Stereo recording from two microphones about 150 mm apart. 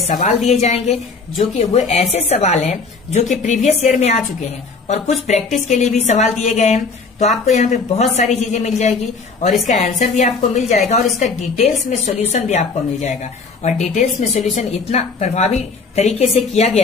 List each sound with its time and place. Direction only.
0.1 s a woman's voice: 45° left (ahead or behind)